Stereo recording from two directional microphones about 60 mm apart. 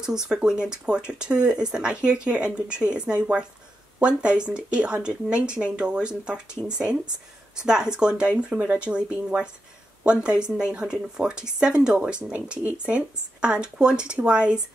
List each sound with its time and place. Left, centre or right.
0.0 s speech: centre
7.5 s speech: centre